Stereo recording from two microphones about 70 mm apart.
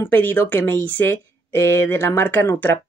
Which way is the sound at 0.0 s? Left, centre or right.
Left.